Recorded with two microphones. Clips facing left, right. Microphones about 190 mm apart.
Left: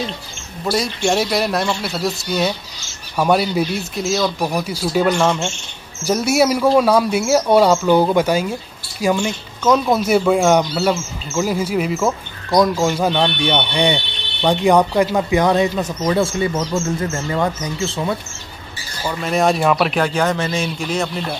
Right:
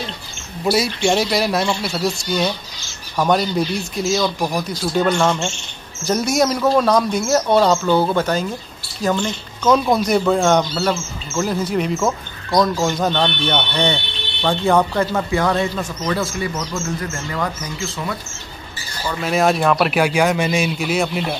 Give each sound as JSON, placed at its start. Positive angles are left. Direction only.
{"t": 0.7, "sound": "speech", "side_deg": -5}
{"t": 19.2, "sound": "speech", "side_deg": 0}